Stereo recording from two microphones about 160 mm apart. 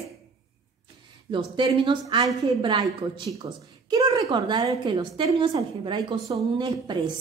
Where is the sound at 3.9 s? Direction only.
25° right (ahead or behind).